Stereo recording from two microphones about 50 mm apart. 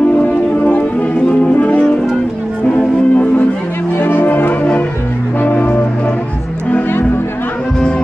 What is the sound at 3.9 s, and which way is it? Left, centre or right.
Music, left.